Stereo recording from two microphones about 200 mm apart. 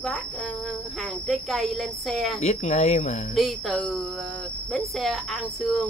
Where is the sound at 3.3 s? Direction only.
Centre (ahead or behind).